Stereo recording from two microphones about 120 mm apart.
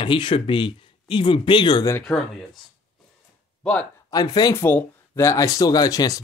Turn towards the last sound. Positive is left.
turn(degrees=30)  # may be behind; listen again after turning